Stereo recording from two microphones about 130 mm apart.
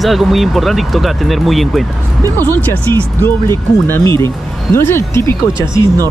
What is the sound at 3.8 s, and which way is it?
Speech, 15° left (ahead or behind).